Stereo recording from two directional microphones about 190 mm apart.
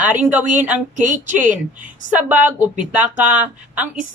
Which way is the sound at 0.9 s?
40° right (ahead or behind).